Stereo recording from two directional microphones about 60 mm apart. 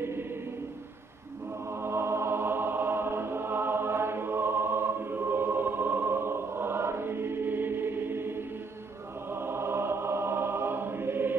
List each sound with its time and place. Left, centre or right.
0.0 s choir: right
1.7 s music: right
9.3 s choir: right